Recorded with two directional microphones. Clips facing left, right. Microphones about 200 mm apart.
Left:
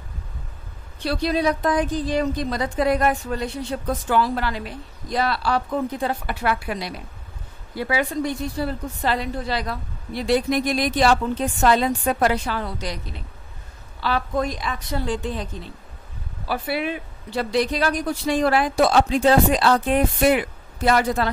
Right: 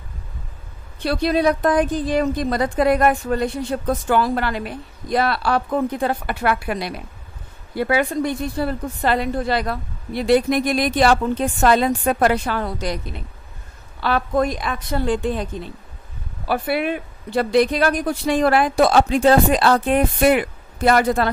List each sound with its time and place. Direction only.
1.0 s a woman's voice: 55° right (ahead or behind)
14.0 s a woman's voice: 55° right (ahead or behind)
16.4 s a woman's voice: 55° right (ahead or behind)